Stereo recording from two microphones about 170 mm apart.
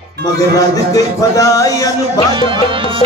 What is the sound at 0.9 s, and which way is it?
Music, 20° left (ahead or behind).